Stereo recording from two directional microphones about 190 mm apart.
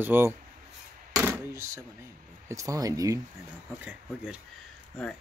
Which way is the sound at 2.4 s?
15° right (ahead or behind).